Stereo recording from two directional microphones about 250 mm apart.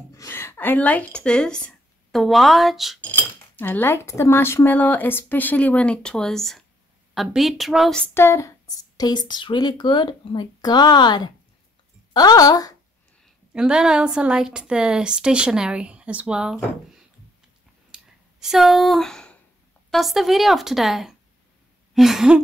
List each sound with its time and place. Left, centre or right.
0.1 s speech: centre
13.5 s a woman's voice: centre
17.9 s a sound: centre
19.9 s a woman's voice: centre